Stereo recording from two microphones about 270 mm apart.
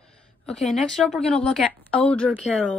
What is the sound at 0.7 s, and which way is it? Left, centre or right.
Speech, centre.